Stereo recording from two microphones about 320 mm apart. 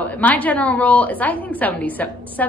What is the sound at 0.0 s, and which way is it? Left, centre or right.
A woman's voice, centre.